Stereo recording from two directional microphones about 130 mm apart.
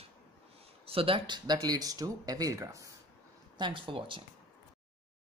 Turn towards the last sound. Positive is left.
turn(degrees=-40)  # may be behind; listen again after turning